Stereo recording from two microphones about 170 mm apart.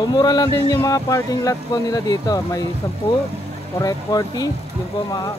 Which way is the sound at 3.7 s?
20° left (ahead or behind).